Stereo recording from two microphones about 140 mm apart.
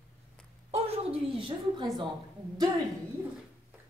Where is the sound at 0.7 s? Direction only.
45° right (ahead or behind).